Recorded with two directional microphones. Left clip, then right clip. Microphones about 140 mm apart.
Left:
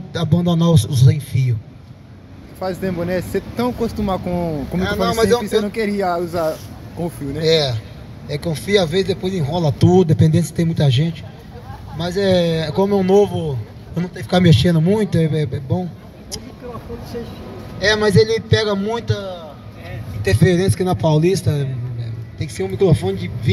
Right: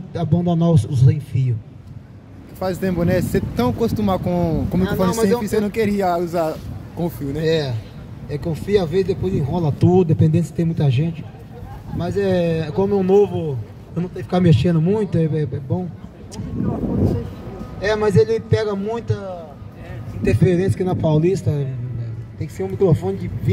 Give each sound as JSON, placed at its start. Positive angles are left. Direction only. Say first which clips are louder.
{"t": 0.1, "sound": "speech", "louder": "left 1 dB", "side_deg": 30}
{"t": 2.6, "sound": "speech", "louder": "right 1 dB", "side_deg": -60}
{"t": 5.1, "sound": "a man's voice", "louder": "left 5 dB", "side_deg": 40}
{"t": 5.4, "sound": "speech", "louder": "left 1 dB", "side_deg": -50}
{"t": 7.4, "sound": "a man's voice", "louder": "left 5 dB", "side_deg": 30}
{"t": 17.7, "sound": "a man's voice", "louder": "left 2 dB", "side_deg": 30}
{"t": 22.8, "sound": "speech", "louder": "left 1 dB", "side_deg": 50}